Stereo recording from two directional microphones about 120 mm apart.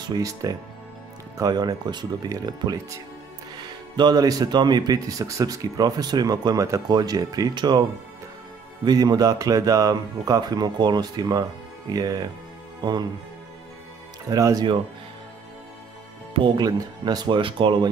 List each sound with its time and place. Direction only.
0.0 s speech: 30° right (ahead or behind)
8.8 s speech: 35° right (ahead or behind)
14.3 s speech: 30° right (ahead or behind)
16.3 s speech: 40° right (ahead or behind)